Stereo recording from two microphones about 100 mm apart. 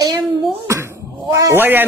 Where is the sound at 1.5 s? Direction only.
20° right (ahead or behind).